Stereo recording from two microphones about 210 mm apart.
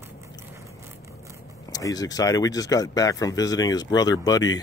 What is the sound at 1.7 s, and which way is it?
Speech, 20° left (ahead or behind).